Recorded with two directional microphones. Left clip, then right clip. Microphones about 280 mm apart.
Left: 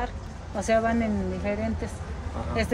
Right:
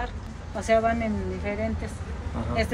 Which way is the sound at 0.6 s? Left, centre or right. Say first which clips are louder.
Right 1 dB; left.